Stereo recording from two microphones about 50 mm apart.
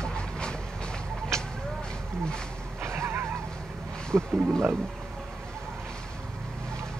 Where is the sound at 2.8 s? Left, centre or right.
Right.